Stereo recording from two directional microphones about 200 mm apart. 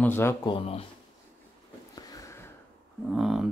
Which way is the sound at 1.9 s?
15° left (ahead or behind).